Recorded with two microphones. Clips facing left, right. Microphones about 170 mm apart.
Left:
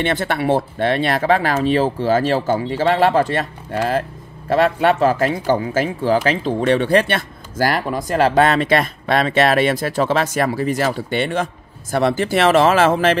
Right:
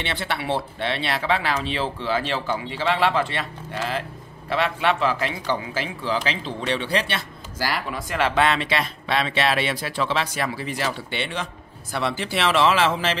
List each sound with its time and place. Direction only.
0.0 s a man's voice: 45° left (ahead or behind)